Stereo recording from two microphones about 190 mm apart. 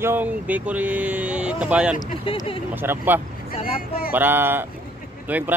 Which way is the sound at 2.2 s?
30° left (ahead or behind).